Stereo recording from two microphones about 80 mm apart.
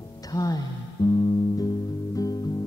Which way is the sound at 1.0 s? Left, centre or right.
Left.